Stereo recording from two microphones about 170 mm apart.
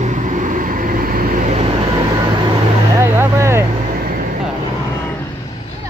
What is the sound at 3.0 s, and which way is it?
Vehicle, 15° right (ahead or behind).